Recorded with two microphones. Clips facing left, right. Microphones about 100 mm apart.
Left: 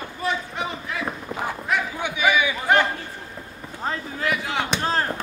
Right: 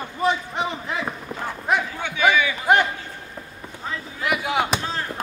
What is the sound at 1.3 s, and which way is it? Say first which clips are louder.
Speech: right 2 dB; 10° left (ahead or behind).